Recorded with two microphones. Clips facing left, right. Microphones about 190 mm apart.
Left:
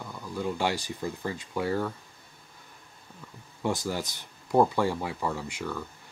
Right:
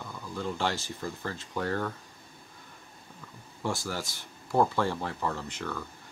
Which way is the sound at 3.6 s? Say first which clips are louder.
Left 3 dB; 15° left (ahead or behind).